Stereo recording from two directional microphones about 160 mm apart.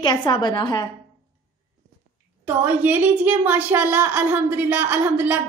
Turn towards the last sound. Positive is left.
turn(degrees=-10)  # may be behind; listen again after turning